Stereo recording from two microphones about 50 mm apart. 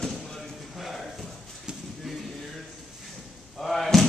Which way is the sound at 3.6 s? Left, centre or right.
Centre.